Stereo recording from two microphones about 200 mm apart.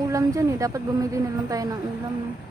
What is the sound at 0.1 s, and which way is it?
A woman's voice, 15° right (ahead or behind).